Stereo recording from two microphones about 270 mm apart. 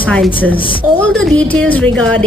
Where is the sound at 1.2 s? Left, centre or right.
Centre.